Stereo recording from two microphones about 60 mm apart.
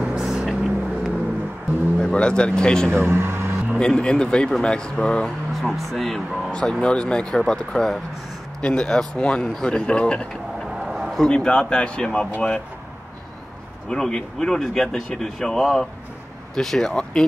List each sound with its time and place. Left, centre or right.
0.0 s vehicle: centre
2.0 s speech: centre
3.0 s speech: right
3.8 s speech: centre
6.5 s speech: centre
10.7 s a sound: centre
11.1 s speech: centre
13.8 s speech: centre